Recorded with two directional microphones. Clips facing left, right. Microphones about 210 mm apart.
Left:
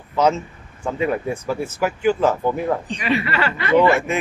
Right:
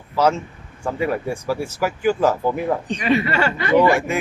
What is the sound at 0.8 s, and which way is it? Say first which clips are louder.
Speech: left 1 dB; 5° right (ahead or behind).